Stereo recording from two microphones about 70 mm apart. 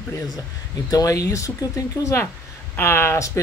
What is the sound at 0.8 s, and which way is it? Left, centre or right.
Speech, left.